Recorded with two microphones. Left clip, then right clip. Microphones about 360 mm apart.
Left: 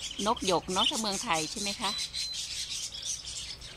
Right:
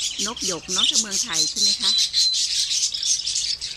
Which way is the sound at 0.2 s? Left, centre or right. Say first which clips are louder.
Right 1 dB; centre.